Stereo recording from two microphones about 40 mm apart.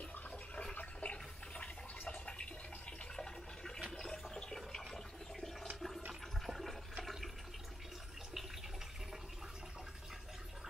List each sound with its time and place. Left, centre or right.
0.7 s toilet flush: left
3.2 s a sound: centre
4.0 s toilet flush: centre